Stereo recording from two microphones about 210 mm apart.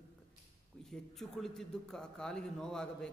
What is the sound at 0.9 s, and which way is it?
A man's voice, centre (ahead or behind).